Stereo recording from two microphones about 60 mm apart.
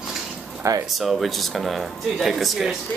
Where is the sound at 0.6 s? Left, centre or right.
Right.